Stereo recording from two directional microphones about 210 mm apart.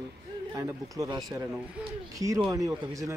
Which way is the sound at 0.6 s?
15° right (ahead or behind).